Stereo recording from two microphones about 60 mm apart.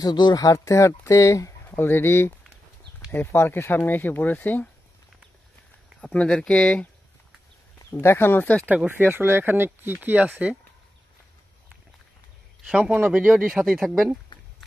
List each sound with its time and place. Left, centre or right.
0.0 s speech: left
1.8 s speech: left
5.9 s speech: centre
8.0 s speech: left
8.6 s speech: right
9.9 s speech: right
12.6 s a man's voice: centre
12.9 s speech: right